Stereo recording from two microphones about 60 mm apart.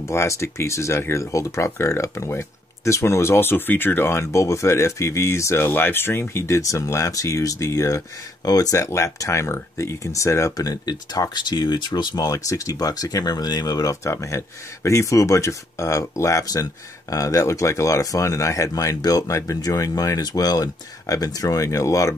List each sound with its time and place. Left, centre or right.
0.0 s speech: left
5.7 s speech: left
8.5 s speech: left
8.7 s speech: left
14.0 s speech: left